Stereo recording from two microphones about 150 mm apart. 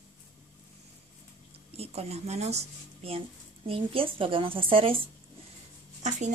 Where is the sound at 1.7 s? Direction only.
45° right (ahead or behind).